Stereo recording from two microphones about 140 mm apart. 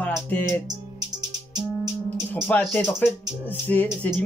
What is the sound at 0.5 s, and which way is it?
Music, 30° right (ahead or behind).